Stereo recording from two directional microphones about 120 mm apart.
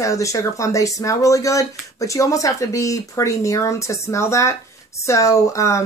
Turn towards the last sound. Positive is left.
turn(degrees=25)  # may be behind; listen again after turning